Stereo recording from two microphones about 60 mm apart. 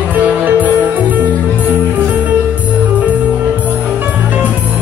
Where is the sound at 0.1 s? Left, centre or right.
Right.